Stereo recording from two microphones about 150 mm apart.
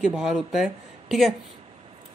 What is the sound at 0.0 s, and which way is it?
Speech, 5° right (ahead or behind).